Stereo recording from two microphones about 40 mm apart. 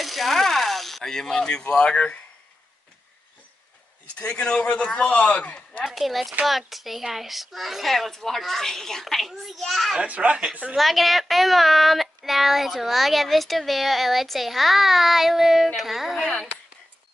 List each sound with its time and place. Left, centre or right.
0.0 s a sound: centre; by 2.1 s left
4.2 s a man's voice: left
5.9 s speech: centre
10.0 s speech: right
10.8 s speech: centre
16.2 s speech: centre